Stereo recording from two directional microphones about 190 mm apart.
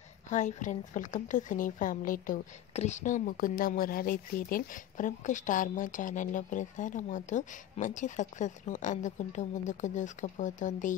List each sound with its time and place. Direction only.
0.3 s a woman's voice: 40° left (ahead or behind)